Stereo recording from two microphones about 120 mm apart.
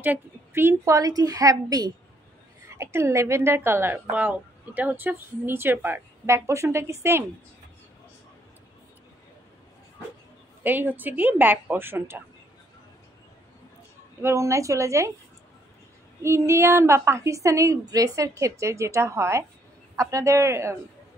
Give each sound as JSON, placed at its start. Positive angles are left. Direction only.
{"t": 0.0, "sound": "a woman's voice", "side_deg": -15}
{"t": 10.6, "sound": "speech", "side_deg": -15}
{"t": 14.2, "sound": "a woman's voice", "side_deg": -25}
{"t": 16.2, "sound": "a woman's voice", "side_deg": -25}